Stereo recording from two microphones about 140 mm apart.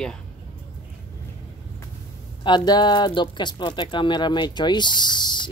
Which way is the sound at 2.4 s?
30° left (ahead or behind).